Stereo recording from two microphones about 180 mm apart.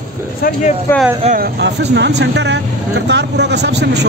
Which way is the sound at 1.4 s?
70° right (ahead or behind).